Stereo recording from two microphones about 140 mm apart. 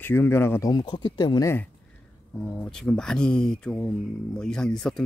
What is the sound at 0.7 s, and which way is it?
Speech, 30° left (ahead or behind).